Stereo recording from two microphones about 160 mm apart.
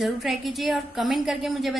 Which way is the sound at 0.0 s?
Centre (ahead or behind).